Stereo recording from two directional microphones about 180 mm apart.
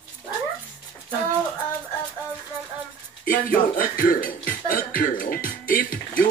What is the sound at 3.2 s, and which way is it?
Speech, 50° left (ahead or behind).